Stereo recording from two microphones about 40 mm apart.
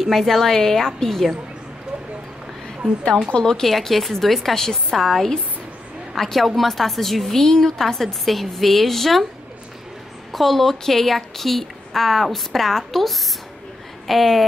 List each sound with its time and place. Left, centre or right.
0.1 s a woman's voice: centre
3.3 s a woman's voice: centre
3.6 s a woman's voice: centre
10.3 s a woman's voice: centre